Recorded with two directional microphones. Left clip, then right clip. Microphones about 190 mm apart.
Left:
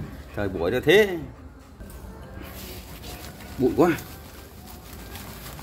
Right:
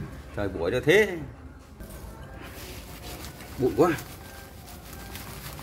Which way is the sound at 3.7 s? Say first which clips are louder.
Left 1 dB; 35° left (ahead or behind).